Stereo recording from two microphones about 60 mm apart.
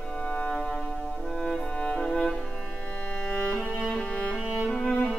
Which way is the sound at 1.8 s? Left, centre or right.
Centre.